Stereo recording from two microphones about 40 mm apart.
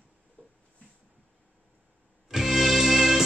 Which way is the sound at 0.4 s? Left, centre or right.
Left.